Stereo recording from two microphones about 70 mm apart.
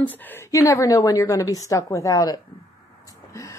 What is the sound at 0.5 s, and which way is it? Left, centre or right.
Speech, left.